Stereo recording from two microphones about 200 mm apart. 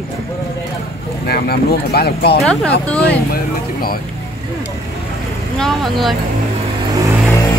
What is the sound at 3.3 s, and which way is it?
Speech, 50° left (ahead or behind).